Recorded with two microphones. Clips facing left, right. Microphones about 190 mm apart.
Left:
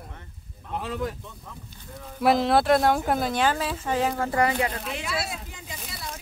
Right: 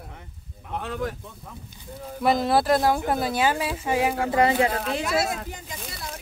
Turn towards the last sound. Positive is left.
turn(degrees=-45)  # may be behind; listen again after turning